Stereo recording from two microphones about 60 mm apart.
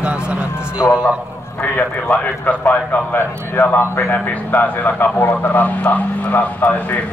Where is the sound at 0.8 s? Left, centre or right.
Centre.